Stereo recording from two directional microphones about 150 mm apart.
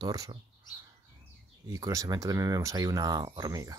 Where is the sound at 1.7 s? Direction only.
20° right (ahead or behind).